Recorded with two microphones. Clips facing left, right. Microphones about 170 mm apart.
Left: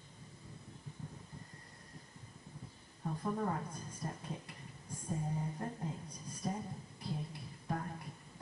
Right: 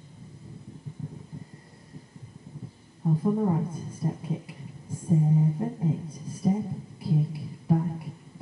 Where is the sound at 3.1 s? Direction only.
20° right (ahead or behind).